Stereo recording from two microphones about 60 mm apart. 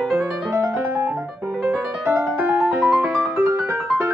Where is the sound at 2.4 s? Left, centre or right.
Right.